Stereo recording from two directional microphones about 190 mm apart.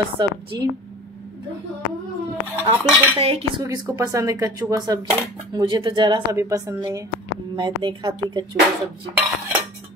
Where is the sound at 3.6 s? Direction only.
20° right (ahead or behind).